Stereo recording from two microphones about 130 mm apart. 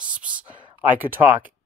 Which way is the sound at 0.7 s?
15° right (ahead or behind).